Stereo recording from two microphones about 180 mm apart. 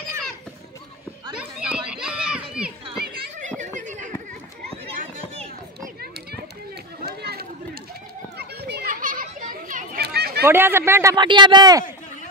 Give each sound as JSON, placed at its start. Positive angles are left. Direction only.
{"t": 1.4, "sound": "children playing", "side_deg": -5}
{"t": 3.0, "sound": "children playing", "side_deg": -45}
{"t": 3.6, "sound": "a sound", "side_deg": -45}
{"t": 7.1, "sound": "run", "side_deg": -60}
{"t": 8.4, "sound": "children playing", "side_deg": -65}
{"t": 10.0, "sound": "a sound", "side_deg": -65}
{"t": 10.4, "sound": "a man's voice", "side_deg": -10}